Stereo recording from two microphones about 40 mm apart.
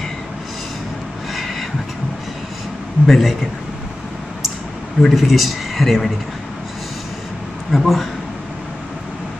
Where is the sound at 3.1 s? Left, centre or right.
Centre.